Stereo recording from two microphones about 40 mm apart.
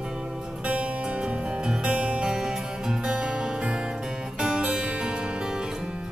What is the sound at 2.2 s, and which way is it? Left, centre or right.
Music, centre.